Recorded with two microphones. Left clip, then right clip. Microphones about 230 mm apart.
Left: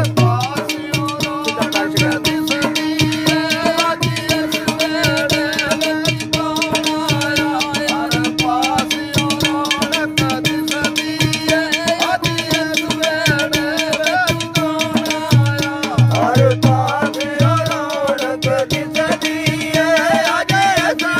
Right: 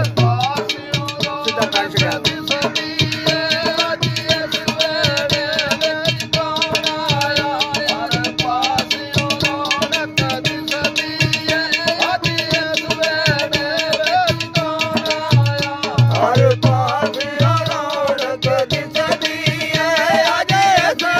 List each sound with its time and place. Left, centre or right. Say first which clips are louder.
20.0 s music: even; right